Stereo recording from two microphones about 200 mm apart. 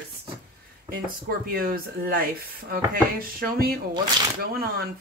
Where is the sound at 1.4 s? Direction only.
50° right (ahead or behind).